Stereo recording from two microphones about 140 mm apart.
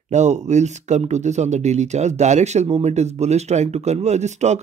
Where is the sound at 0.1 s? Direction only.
55° right (ahead or behind).